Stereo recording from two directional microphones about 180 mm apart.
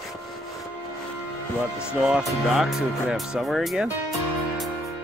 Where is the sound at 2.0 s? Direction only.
5° right (ahead or behind).